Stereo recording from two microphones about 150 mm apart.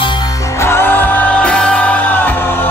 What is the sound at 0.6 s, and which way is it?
Music, 15° left (ahead or behind).